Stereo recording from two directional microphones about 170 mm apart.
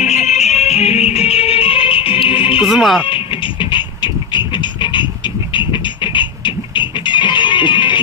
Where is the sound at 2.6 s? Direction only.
Centre (ahead or behind).